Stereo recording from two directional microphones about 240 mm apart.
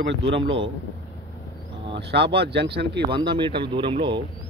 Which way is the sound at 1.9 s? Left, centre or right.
Right.